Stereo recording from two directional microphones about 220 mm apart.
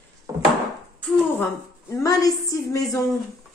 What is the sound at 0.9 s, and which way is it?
A woman's voice, 5° left (ahead or behind).